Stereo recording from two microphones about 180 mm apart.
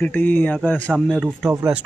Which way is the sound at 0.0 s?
10° left (ahead or behind).